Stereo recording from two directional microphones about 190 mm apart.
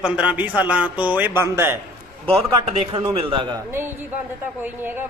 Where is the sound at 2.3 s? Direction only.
30° right (ahead or behind).